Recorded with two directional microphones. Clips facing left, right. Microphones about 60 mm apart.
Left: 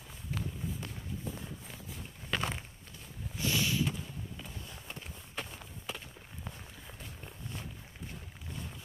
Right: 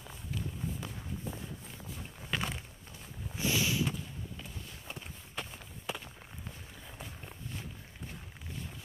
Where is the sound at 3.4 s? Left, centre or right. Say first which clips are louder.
Even; centre.